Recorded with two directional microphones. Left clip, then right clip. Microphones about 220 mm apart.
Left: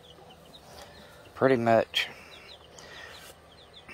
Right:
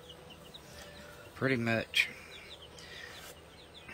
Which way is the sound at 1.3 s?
15° left (ahead or behind).